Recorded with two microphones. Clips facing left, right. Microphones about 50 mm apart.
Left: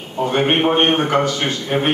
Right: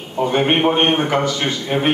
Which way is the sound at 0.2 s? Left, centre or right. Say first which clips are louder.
Right 1 dB; centre.